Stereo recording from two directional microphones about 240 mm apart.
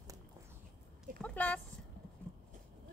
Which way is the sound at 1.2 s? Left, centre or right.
Centre.